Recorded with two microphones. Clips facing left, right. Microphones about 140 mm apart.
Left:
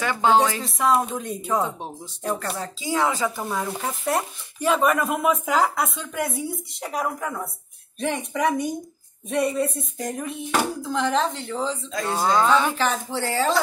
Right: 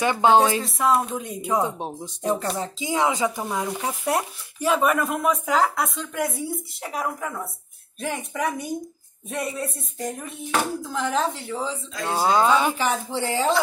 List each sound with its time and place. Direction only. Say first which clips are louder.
0.0 s speech: right 2 dB; 20° right (ahead or behind)
0.6 s speech: even; centre (ahead or behind)